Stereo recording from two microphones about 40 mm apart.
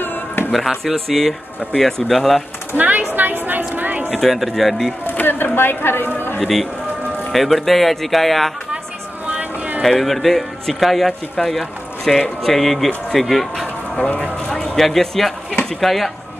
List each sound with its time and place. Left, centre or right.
0.0 s music: left
0.8 s speech: centre
3.2 s a sound: right
4.2 s speech: centre
5.1 s a man's voice: left
6.4 s speech: centre
9.3 s a sound: right
9.8 s speech: centre
14.0 s speech: left
14.8 s speech: centre